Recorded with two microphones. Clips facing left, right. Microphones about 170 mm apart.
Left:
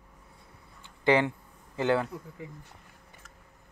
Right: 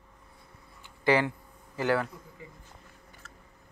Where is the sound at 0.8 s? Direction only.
20° left (ahead or behind).